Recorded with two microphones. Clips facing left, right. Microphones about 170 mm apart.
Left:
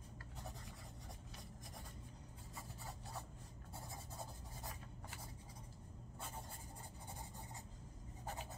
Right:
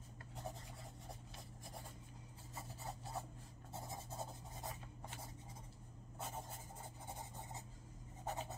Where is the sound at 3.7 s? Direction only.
25° right (ahead or behind).